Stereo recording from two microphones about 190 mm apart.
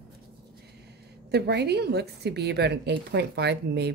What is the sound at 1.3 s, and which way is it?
A woman's voice, 60° right (ahead or behind).